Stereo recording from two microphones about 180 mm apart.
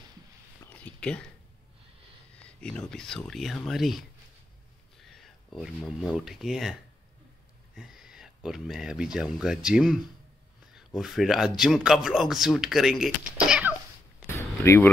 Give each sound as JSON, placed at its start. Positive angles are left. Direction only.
{"t": 0.7, "sound": "a sound", "side_deg": 5}
{"t": 2.3, "sound": "speech", "side_deg": 5}
{"t": 14.6, "sound": "speech", "side_deg": 15}